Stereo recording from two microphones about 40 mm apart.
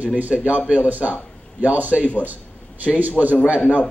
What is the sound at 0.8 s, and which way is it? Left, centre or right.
A man's voice, right.